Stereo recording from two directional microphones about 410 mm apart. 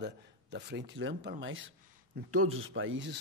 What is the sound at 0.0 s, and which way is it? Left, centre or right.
Speech, right.